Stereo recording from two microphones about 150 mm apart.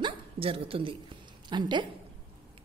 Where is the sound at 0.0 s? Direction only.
40° right (ahead or behind).